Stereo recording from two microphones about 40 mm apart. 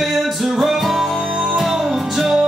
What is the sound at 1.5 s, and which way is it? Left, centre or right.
Music, centre.